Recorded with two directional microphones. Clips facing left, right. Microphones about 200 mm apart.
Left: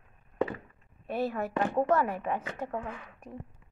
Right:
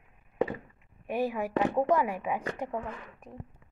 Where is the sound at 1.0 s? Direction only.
15° right (ahead or behind).